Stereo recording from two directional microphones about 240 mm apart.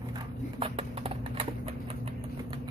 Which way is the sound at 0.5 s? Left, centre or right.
Right.